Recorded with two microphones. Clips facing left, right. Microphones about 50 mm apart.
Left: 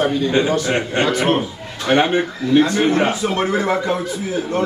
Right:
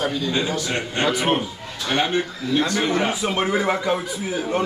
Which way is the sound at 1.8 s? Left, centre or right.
Left.